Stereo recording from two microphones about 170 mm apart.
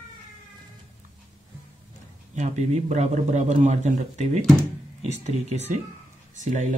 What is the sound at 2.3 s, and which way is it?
Speech, 40° right (ahead or behind).